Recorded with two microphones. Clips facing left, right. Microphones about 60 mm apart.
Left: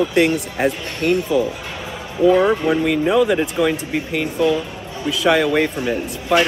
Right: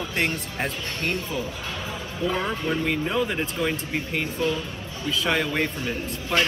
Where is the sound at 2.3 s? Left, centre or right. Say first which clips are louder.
Left 11 dB; left.